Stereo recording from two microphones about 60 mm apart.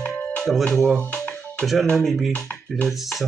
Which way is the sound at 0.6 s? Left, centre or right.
Centre.